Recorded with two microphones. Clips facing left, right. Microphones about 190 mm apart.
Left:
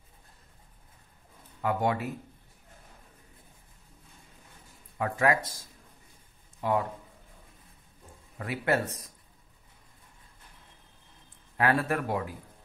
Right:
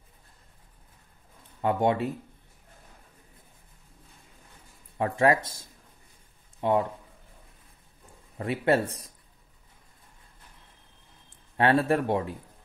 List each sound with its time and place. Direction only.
1.6 s speech: 25° right (ahead or behind)
4.9 s speech: 25° right (ahead or behind)
6.6 s speech: 25° right (ahead or behind)
8.4 s speech: 25° right (ahead or behind)
11.5 s speech: 30° right (ahead or behind)